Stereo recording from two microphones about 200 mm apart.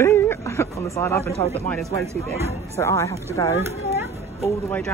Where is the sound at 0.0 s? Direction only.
15° left (ahead or behind).